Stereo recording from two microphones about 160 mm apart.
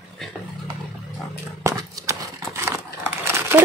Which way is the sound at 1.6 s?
20° right (ahead or behind).